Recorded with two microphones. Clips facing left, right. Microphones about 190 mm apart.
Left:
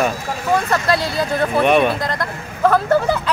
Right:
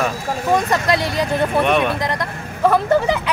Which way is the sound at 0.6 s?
15° right (ahead or behind).